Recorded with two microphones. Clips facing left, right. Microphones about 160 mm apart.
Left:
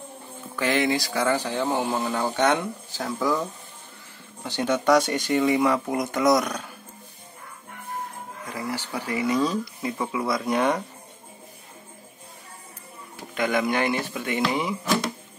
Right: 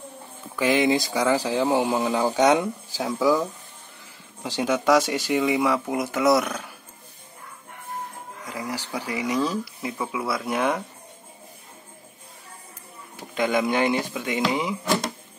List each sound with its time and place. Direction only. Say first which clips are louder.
0.6 s speech: right 3 dB; 10° right (ahead or behind)
8.5 s speech: even; 15° right (ahead or behind)
13.1 s speech: right 1 dB; 20° right (ahead or behind)